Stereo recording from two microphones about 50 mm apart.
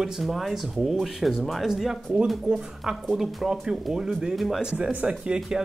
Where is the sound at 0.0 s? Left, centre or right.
Centre.